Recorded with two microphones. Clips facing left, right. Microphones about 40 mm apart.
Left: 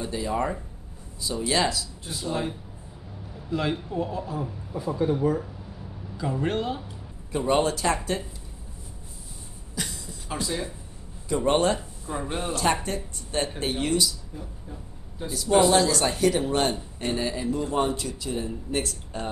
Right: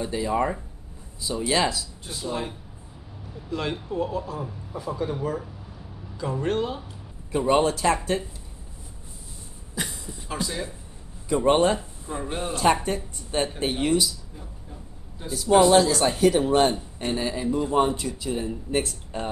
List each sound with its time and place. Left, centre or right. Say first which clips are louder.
0.0 s a man's voice: right 3 dB; centre
6.1 s a man's voice: right 1 dB; centre
9.8 s a sound: right 2 dB; right
10.2 s a man's voice: even; centre
12.1 s a man's voice: even; centre
14.3 s a sound: left 3 dB; centre
15.5 s a man's voice: right 3 dB; centre